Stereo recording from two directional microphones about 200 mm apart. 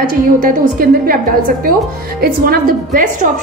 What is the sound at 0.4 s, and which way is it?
Speech, 45° right (ahead or behind).